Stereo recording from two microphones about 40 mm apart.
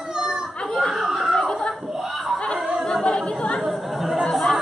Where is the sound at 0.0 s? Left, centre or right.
Centre.